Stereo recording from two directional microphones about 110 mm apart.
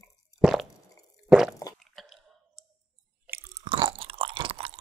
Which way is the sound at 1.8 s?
Centre (ahead or behind).